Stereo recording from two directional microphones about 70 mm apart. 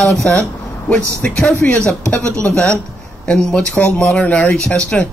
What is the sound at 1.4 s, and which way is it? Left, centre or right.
Speech, centre.